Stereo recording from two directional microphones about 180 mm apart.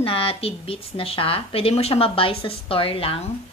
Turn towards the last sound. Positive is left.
turn(degrees=30)  # may be behind; listen again after turning